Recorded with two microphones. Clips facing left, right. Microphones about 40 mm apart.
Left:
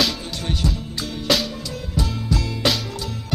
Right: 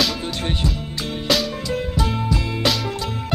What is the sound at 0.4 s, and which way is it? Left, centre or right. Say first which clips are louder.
Music: even; right.